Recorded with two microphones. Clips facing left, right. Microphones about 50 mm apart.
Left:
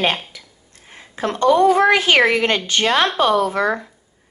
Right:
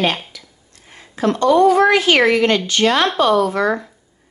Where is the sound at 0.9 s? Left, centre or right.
Left.